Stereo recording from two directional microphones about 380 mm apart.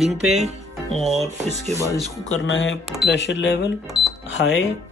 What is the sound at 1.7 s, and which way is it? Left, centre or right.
Speech, centre.